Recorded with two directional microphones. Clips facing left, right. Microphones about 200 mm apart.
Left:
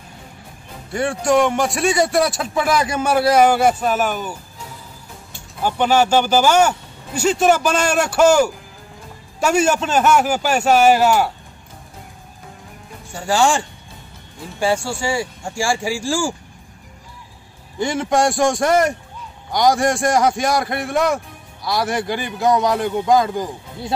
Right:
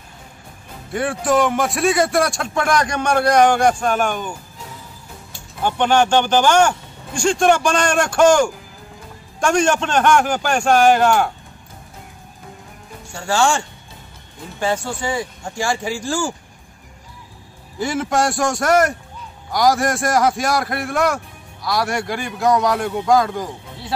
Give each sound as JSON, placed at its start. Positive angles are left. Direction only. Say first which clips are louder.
{"t": 0.9, "sound": "a man's voice", "louder": "left 1 dB", "side_deg": 0}
{"t": 5.6, "sound": "speech", "louder": "even", "side_deg": 5}
{"t": 13.2, "sound": "speech", "louder": "left 1 dB", "side_deg": 5}
{"t": 17.7, "sound": "a man's voice", "louder": "left 1 dB", "side_deg": 0}